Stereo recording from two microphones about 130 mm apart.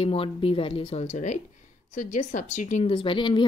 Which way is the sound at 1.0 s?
65° left (ahead or behind).